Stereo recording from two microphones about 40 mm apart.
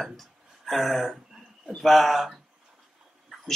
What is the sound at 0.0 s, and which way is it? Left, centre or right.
Speech, centre.